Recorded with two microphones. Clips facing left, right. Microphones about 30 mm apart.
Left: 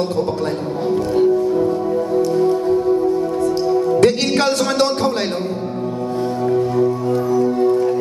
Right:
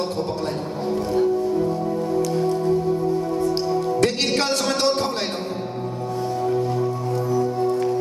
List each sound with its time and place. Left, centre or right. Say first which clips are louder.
3.6 s music: left 6 dB; centre
6.4 s music: left 7 dB; centre